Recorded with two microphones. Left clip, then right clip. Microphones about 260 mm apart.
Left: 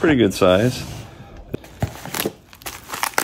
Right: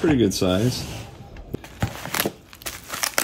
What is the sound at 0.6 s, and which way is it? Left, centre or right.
Speech, centre.